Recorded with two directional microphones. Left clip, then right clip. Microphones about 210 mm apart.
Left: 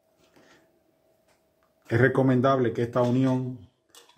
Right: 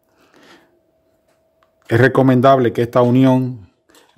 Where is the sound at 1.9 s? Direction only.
50° right (ahead or behind).